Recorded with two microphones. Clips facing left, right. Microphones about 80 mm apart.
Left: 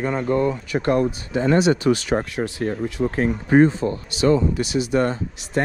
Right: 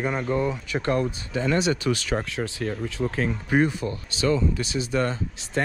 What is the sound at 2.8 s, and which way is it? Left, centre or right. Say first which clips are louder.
Speech: left 5 dB; left.